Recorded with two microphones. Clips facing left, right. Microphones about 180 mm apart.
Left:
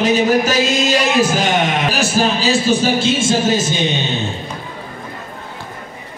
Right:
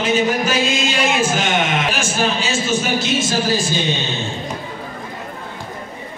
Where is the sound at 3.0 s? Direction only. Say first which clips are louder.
Left 4 dB; 25° left (ahead or behind).